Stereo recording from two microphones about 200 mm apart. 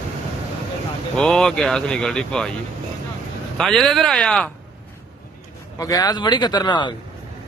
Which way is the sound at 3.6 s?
Centre (ahead or behind).